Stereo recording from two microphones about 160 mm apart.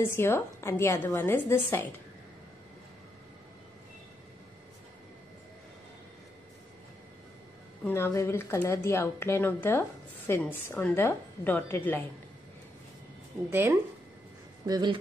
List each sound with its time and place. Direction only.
0.0 s speech: 15° left (ahead or behind)
7.8 s speech: 15° left (ahead or behind)
13.5 s speech: 15° right (ahead or behind)
14.7 s speech: 25° right (ahead or behind)